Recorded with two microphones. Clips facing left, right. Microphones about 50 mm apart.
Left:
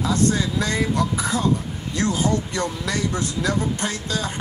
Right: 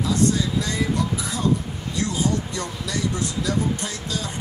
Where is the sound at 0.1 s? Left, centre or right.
Left.